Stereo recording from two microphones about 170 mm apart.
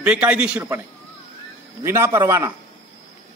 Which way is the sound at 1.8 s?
15° right (ahead or behind).